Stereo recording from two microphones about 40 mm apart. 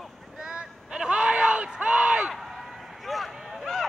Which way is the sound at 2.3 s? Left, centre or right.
Centre.